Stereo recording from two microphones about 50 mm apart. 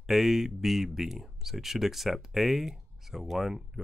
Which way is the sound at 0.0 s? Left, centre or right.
Centre.